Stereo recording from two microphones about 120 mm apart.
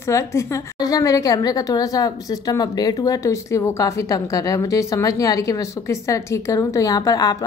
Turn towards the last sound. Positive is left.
turn(degrees=30)  # may be behind; listen again after turning